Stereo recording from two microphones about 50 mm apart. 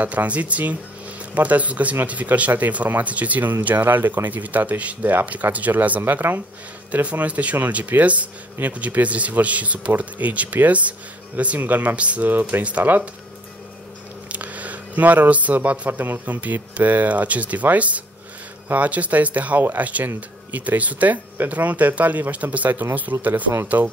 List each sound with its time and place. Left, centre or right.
0.0 s speech: right
12.3 s speech: right
14.3 s a sound: right
15.9 s speech: right
23.1 s speech: right
23.8 s speech: right